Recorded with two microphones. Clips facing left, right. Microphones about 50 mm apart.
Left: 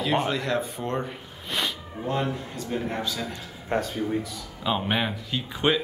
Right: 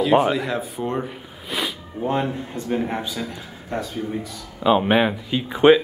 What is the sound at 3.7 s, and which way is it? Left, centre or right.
Speech, left.